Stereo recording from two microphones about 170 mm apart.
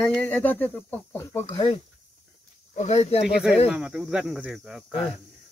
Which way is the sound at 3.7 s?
5° right (ahead or behind).